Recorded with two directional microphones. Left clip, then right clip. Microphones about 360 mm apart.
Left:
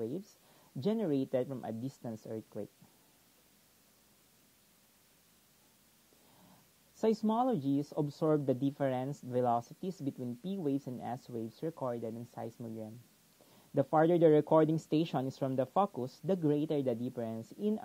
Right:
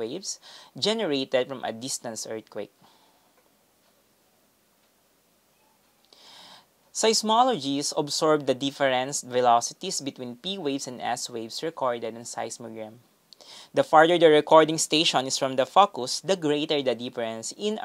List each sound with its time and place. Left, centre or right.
0.2 s speech: centre
7.0 s speech: centre